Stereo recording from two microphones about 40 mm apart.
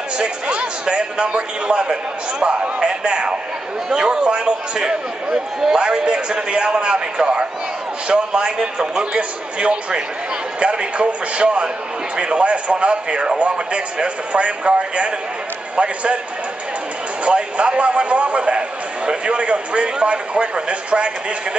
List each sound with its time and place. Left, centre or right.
0.2 s speech: right
17.2 s speech: right